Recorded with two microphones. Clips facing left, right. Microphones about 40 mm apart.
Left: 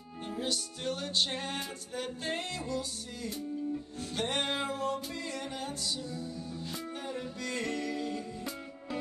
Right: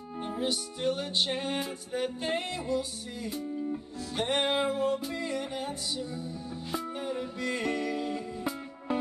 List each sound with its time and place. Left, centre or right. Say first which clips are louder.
0.4 s music: right 4 dB; centre
4.2 s music: right 5 dB; centre